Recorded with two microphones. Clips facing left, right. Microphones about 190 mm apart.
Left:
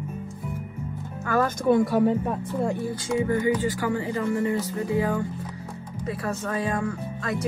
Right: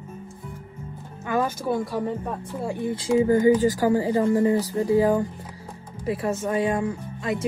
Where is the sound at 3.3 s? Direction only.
40° right (ahead or behind).